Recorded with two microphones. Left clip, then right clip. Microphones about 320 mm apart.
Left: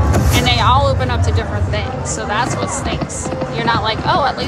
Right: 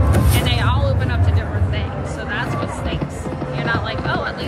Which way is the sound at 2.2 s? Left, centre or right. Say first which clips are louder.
Left 6 dB; centre.